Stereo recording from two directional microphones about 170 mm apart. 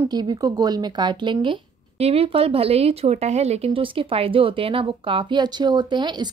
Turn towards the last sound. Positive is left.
turn(degrees=-25)  # may be behind; listen again after turning